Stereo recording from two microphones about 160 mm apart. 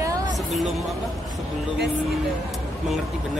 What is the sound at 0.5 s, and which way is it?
Speech, centre (ahead or behind).